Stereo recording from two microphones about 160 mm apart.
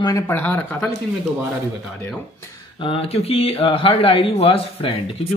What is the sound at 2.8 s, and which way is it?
Speech, 35° left (ahead or behind).